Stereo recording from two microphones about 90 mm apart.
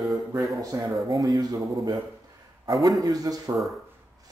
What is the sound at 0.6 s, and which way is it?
A man's voice, 40° right (ahead or behind).